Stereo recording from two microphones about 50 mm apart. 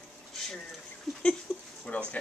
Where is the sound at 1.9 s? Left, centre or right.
Left.